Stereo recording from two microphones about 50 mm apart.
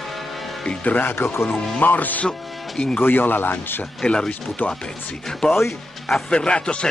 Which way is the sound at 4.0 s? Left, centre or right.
Centre.